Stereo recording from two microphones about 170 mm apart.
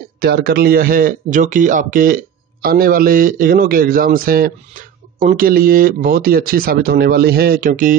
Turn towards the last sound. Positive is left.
turn(degrees=-55)  # may be behind; listen again after turning